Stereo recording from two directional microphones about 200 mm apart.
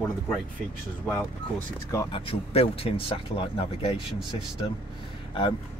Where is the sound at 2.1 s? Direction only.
30° left (ahead or behind).